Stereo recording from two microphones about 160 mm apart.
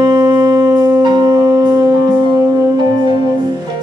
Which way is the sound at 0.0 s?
20° right (ahead or behind).